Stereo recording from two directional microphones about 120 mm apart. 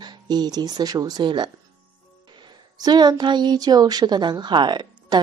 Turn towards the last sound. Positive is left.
turn(degrees=-40)  # may be behind; listen again after turning